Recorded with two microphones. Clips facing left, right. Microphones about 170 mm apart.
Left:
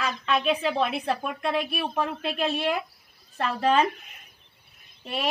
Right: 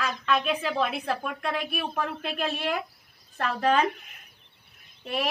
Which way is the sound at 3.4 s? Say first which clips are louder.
Left 1 dB; 5° right (ahead or behind).